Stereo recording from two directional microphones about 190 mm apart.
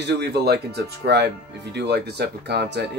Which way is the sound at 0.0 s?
60° right (ahead or behind).